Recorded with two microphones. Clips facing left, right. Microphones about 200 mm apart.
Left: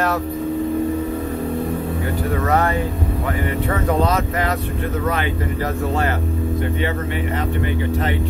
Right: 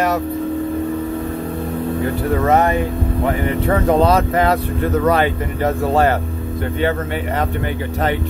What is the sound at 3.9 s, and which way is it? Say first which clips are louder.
Speech: right 5 dB; 30° right (ahead or behind).